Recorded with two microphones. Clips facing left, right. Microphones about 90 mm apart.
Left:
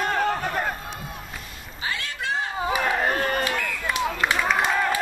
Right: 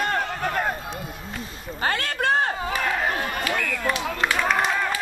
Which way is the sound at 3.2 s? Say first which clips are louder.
Left 3 dB; 45° left (ahead or behind).